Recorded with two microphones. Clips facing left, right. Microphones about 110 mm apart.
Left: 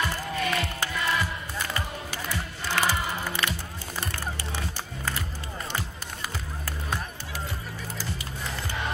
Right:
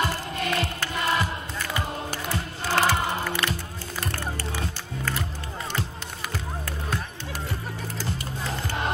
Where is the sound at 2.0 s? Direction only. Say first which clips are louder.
Right 3 dB; 45° right (ahead or behind).